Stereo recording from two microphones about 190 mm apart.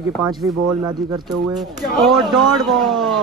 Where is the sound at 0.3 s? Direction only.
20° right (ahead or behind).